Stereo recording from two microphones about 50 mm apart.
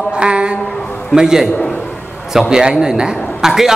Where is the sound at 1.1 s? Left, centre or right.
Centre.